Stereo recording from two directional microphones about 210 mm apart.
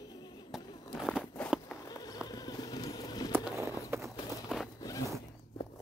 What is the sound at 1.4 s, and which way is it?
Walk, centre (ahead or behind).